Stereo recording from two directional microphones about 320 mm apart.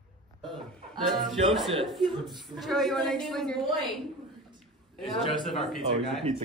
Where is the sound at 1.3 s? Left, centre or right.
Centre.